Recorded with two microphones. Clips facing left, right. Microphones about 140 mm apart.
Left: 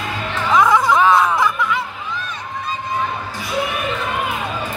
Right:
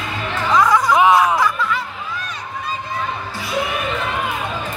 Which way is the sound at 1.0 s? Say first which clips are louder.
Right 1 dB; 15° right (ahead or behind).